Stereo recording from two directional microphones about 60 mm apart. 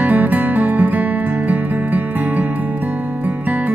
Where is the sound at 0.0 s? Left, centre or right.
Right.